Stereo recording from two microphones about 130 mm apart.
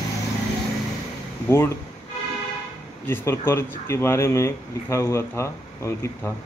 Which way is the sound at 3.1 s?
15° left (ahead or behind).